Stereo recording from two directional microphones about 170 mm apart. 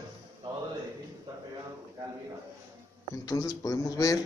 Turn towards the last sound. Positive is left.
turn(degrees=20)  # may be behind; listen again after turning